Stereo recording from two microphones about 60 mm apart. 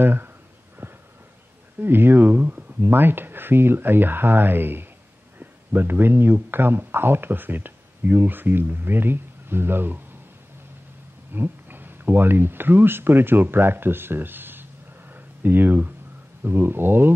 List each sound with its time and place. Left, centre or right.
0.0 s speech: right
1.8 s speech: right
11.3 s speech: right
15.1 s a sound: right
16.4 s speech: right